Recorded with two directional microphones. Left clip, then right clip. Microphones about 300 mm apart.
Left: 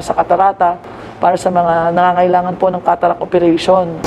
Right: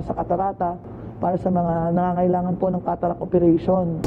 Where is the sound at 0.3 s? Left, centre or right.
Centre.